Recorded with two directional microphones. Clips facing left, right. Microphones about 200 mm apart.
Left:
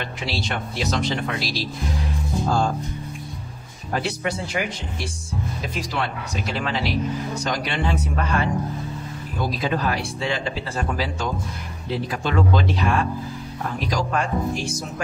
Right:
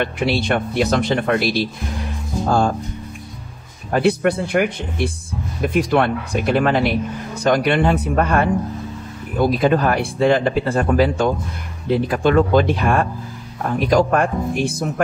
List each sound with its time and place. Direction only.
0.0 s speech: 55° right (ahead or behind)
3.9 s speech: 55° right (ahead or behind)